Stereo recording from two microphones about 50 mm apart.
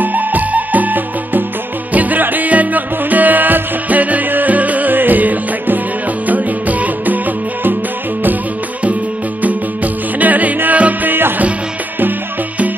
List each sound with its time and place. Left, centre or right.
0.0 s music: right
10.1 s music: right